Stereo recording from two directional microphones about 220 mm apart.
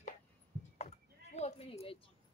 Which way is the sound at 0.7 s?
30° left (ahead or behind).